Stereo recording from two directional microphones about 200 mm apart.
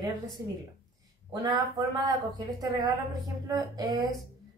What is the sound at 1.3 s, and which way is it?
Speech, 20° right (ahead or behind).